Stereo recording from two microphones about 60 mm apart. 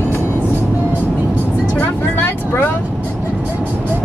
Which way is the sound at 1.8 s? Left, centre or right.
Left.